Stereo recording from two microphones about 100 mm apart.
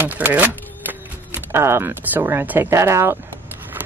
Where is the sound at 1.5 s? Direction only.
25° right (ahead or behind).